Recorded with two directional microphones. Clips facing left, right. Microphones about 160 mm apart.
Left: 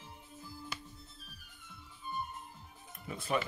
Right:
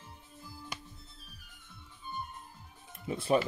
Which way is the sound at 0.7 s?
15° right (ahead or behind).